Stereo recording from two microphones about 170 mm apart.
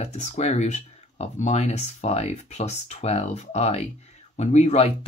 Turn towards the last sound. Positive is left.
turn(degrees=40)  # may be behind; listen again after turning